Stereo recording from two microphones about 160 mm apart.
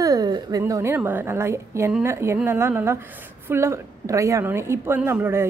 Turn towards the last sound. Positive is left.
turn(degrees=-15)  # may be behind; listen again after turning